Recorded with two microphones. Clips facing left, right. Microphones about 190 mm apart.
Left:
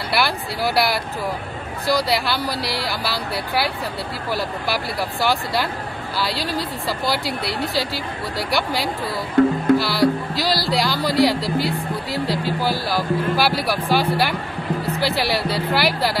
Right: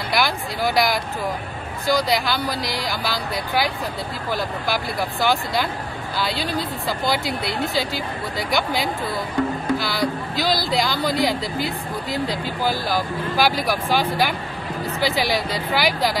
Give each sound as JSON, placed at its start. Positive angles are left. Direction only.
{"t": 0.1, "sound": "speech", "side_deg": 5}
{"t": 5.2, "sound": "speech", "side_deg": 5}
{"t": 9.4, "sound": "speech", "side_deg": 55}
{"t": 9.8, "sound": "speech", "side_deg": 5}